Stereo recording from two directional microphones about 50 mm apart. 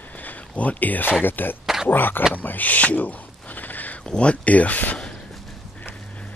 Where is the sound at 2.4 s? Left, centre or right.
Left.